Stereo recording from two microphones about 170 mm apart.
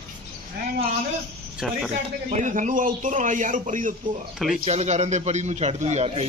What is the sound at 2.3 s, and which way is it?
A man's voice, 45° right (ahead or behind).